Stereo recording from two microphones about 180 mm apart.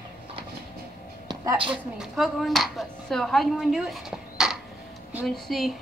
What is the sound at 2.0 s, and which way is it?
A woman's voice, centre (ahead or behind).